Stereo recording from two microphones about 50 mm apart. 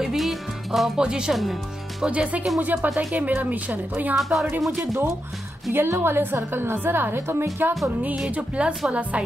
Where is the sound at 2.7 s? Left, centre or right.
Right.